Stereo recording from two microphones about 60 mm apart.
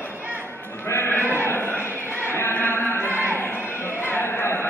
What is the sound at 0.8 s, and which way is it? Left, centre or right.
Sheep, left.